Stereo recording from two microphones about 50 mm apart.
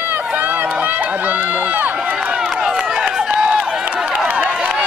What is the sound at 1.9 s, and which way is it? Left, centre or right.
Speech, centre.